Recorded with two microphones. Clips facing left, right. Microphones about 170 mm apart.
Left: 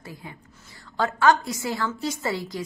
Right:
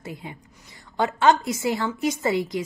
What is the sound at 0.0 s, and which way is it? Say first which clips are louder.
A woman's voice: right 4 dB; 20° right (ahead or behind).